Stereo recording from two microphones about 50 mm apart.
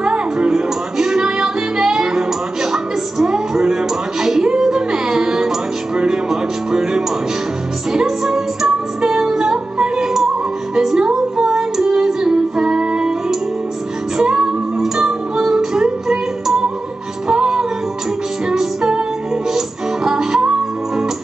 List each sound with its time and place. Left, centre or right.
0.0 s music: centre
20.1 s music: centre